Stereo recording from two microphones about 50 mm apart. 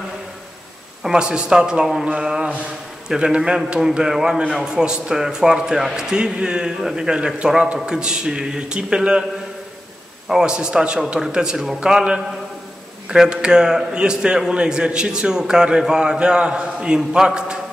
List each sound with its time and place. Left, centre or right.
1.0 s a man's voice: centre
10.2 s a man's voice: centre